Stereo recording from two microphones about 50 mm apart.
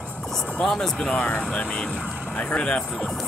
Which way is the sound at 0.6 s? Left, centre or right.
Centre.